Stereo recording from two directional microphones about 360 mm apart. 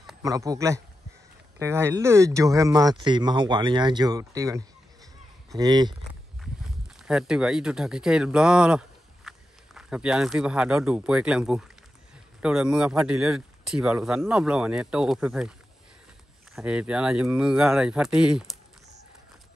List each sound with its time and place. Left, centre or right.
0.0 s a man's voice: centre
7.1 s a man's voice: centre
16.5 s a man's voice: centre